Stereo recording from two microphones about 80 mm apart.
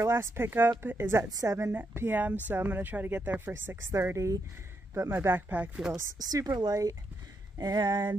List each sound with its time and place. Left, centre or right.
0.0 s speech: right
1.3 s speech: right
1.7 s speech: right
6.1 s speech: right
7.5 s a sound: right